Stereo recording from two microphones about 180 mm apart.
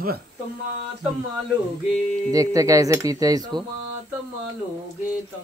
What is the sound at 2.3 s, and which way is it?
Speech, 20° right (ahead or behind).